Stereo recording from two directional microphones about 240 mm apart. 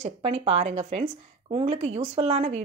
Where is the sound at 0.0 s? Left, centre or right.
Right.